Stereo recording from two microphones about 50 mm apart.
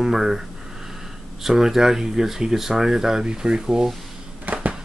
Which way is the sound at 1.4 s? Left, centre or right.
Centre.